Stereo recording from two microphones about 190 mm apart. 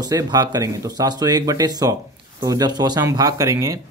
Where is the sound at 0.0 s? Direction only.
20° right (ahead or behind).